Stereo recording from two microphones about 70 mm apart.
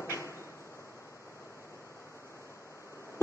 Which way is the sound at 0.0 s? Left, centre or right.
Left.